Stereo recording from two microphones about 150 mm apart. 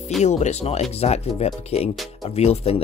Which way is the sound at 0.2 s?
50° left (ahead or behind).